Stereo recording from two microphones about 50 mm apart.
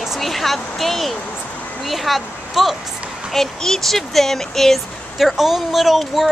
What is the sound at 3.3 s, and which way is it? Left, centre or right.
Speech, centre.